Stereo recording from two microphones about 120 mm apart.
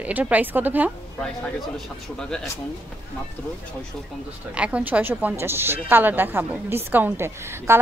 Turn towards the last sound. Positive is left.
turn(degrees=-20)  # may be behind; listen again after turning